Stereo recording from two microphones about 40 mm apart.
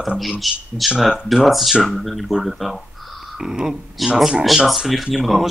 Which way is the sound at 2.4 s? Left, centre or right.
Centre.